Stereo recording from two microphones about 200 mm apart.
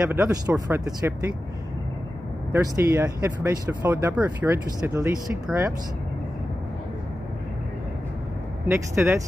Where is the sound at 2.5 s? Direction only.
15° right (ahead or behind).